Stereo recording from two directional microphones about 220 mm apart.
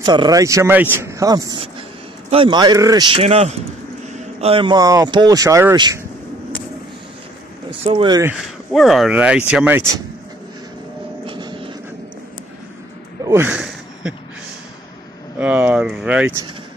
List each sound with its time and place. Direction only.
0.0 s speech: 20° right (ahead or behind)
7.8 s speech: 25° right (ahead or behind)
8.2 s speech: 5° right (ahead or behind)
11.2 s music: 20° right (ahead or behind)
13.2 s a sound: 10° right (ahead or behind)
15.3 s speech: 5° right (ahead or behind)